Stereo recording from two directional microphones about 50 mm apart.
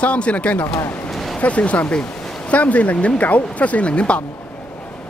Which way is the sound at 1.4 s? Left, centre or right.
Left.